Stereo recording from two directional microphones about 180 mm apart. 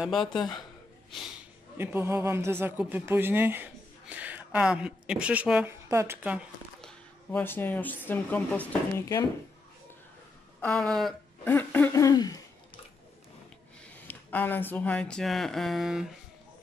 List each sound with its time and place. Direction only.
0.4 s speech: 25° left (ahead or behind)
1.8 s speech: 10° right (ahead or behind)
6.8 s speech: 5° left (ahead or behind)
10.6 s speech: 5° left (ahead or behind); by 12.4 s 20° left (ahead or behind)
14.0 s speech: 10° left (ahead or behind)